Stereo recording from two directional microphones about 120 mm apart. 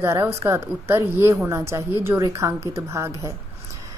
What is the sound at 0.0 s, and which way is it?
A woman's voice, 20° right (ahead or behind).